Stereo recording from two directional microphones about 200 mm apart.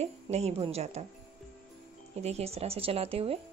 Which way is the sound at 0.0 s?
30° right (ahead or behind).